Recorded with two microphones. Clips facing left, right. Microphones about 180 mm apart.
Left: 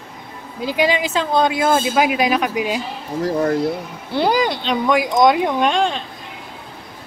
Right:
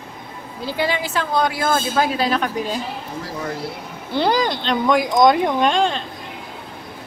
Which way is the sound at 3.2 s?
45° left (ahead or behind).